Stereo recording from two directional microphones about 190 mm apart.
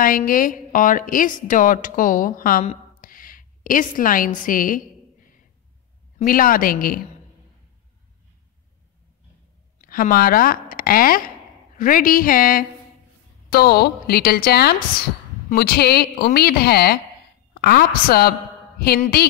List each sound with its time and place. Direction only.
0.0 s a woman's voice: 45° left (ahead or behind)
6.1 s a woman's voice: 50° left (ahead or behind)
9.8 s a woman's voice: 50° left (ahead or behind)